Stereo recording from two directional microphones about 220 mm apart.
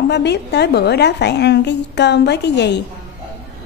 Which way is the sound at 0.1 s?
50° left (ahead or behind).